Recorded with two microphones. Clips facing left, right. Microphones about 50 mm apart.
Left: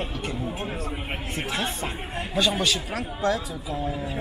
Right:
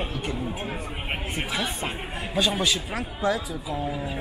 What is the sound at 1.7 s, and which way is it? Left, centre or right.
Speech, centre.